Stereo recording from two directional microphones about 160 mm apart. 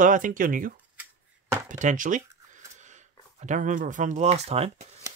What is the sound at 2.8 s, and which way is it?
Speech, 50° right (ahead or behind).